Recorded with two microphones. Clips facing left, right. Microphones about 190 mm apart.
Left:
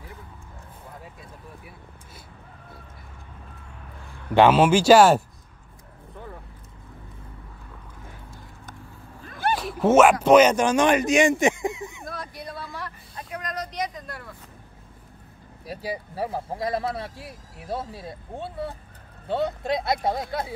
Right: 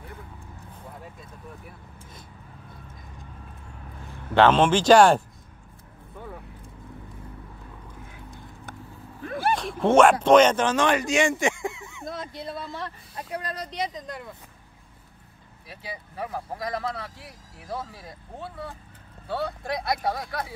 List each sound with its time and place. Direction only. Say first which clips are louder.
4.3 s speech: left 2 dB; 10° left (ahead or behind)
9.4 s a sound: left 1 dB; centre (ahead or behind)
10.2 s speech: left 1 dB; 10° left (ahead or behind)
12.1 s speech: right 2 dB; 25° right (ahead or behind)
15.6 s speech: left 8 dB; 35° left (ahead or behind)